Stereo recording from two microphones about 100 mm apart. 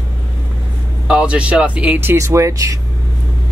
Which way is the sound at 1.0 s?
10° right (ahead or behind).